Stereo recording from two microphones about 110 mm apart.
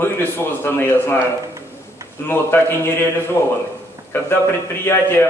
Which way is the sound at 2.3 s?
20° left (ahead or behind).